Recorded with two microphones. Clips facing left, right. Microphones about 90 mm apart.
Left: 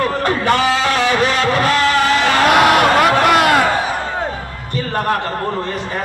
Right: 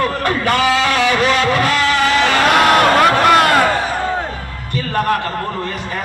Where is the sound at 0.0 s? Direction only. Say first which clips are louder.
Even; 30° left (ahead or behind).